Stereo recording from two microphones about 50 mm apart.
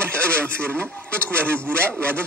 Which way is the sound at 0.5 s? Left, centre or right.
Left.